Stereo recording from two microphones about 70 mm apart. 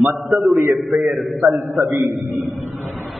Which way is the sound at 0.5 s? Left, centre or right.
Right.